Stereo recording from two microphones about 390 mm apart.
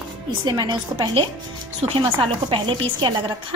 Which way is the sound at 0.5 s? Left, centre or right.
Centre.